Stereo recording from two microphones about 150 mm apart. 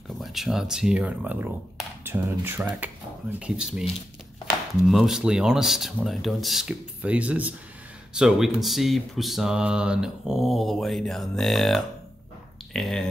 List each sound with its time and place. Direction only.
0.2 s speech: centre (ahead or behind)
4.8 s mantra: centre (ahead or behind)